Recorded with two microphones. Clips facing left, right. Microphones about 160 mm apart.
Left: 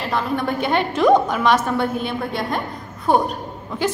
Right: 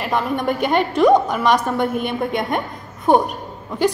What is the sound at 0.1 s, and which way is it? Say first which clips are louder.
A woman's voice: right 2 dB; 15° right (ahead or behind).